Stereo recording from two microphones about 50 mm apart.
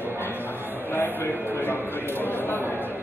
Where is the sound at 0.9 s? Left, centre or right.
Left.